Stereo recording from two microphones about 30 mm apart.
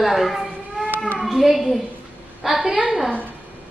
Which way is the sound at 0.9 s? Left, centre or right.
Left.